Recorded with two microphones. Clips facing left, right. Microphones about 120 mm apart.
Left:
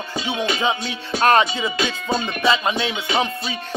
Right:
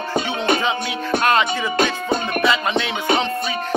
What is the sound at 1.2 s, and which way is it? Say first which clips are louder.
Music: left 2 dB; 30° left (ahead or behind).